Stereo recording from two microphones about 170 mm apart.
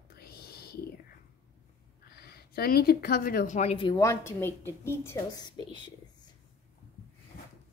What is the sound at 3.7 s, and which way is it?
Speech, 30° left (ahead or behind).